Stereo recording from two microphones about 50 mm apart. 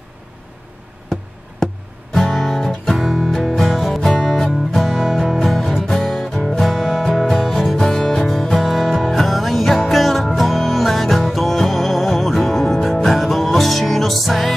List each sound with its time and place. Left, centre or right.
2.2 s music: centre